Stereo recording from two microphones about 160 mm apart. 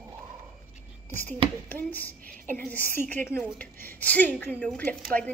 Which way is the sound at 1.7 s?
10° left (ahead or behind).